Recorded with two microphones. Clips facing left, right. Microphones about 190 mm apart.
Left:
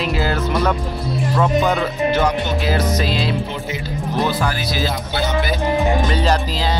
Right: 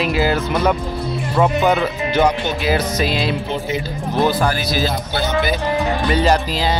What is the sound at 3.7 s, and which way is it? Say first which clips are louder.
Speech: right 1 dB; 40° right (ahead or behind).